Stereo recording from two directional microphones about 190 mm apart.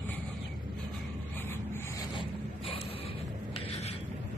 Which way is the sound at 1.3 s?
10° left (ahead or behind).